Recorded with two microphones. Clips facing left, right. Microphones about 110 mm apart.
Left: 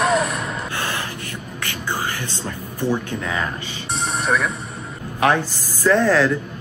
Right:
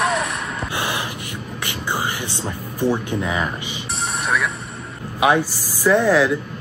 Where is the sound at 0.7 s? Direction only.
15° right (ahead or behind).